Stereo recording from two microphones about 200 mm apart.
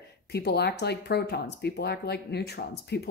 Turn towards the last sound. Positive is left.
turn(degrees=55)  # may be behind; listen again after turning